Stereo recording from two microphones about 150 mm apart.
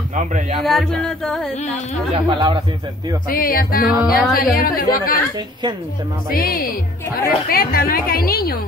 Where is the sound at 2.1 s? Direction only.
30° right (ahead or behind).